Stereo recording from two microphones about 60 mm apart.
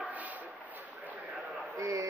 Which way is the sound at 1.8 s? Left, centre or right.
Right.